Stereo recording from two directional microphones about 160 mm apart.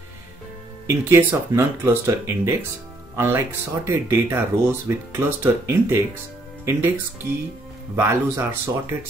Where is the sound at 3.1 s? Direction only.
15° right (ahead or behind).